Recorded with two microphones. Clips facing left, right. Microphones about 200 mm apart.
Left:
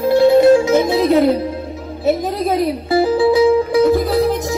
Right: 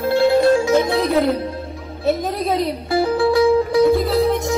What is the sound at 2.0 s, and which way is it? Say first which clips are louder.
Speech: left 3 dB; centre (ahead or behind).